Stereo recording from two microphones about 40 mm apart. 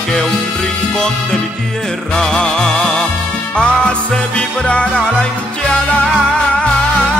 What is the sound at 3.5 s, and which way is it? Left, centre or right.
Music, left.